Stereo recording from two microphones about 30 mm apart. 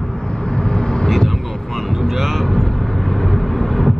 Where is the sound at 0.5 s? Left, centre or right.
Left.